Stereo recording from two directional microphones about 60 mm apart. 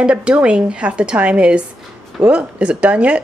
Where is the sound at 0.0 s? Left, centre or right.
Centre.